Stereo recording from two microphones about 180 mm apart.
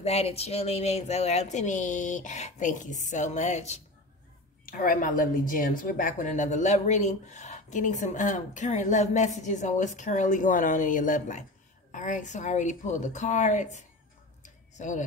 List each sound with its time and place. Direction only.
0.0 s speech: 35° left (ahead or behind)
4.6 s speech: 50° left (ahead or behind)
14.4 s tick-tock: 45° left (ahead or behind)